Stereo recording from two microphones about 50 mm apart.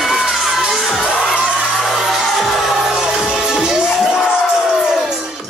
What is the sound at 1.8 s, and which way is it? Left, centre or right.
Music, centre.